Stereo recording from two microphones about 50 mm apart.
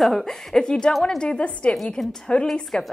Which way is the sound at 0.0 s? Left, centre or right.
Centre.